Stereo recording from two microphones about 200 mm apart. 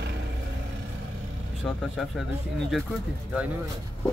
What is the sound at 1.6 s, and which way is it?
Speech, centre (ahead or behind).